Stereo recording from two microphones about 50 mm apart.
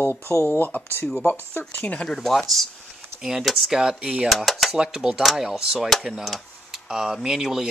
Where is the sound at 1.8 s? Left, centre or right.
Left.